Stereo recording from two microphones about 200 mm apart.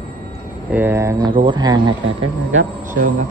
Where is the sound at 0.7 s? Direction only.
10° right (ahead or behind).